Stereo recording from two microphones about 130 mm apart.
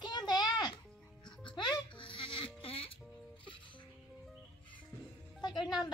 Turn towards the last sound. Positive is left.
turn(degrees=35)  # may be behind; listen again after turning